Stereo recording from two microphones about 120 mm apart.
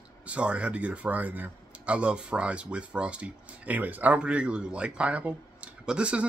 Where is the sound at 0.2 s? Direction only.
10° right (ahead or behind).